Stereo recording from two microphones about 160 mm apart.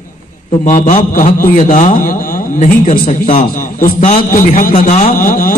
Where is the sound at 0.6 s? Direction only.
50° left (ahead or behind).